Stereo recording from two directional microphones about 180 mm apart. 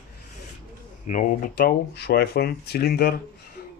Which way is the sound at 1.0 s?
45° left (ahead or behind).